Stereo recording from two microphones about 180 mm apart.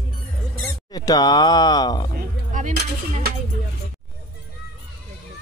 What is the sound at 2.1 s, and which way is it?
Music, 45° right (ahead or behind).